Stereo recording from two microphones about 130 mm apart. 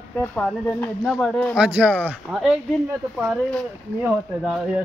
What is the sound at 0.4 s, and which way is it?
Speech, 10° left (ahead or behind).